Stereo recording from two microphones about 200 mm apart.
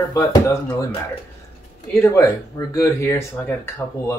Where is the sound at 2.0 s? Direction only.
10° left (ahead or behind).